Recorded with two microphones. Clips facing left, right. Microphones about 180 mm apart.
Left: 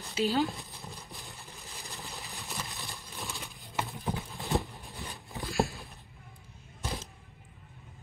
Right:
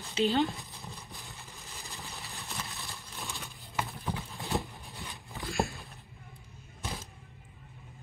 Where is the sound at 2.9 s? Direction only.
Centre (ahead or behind).